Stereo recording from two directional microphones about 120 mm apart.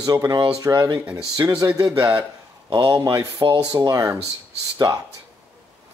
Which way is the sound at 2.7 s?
30° right (ahead or behind).